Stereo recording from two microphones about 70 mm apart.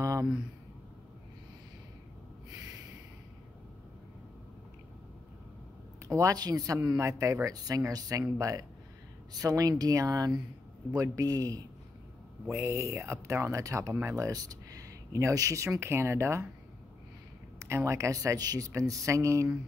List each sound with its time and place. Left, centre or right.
0.0 s a sound: right
6.0 s a woman's voice: right
6.3 s speech: right
12.5 s speech: right
14.3 s speech: right
17.6 s speech: right
18.7 s speech: right